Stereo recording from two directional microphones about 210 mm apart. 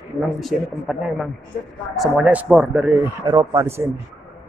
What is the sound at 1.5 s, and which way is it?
Speech, 45° left (ahead or behind).